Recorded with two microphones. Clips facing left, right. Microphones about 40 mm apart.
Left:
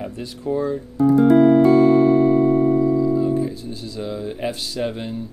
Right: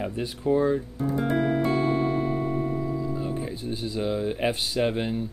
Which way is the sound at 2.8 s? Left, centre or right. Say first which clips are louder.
Left 11 dB; centre.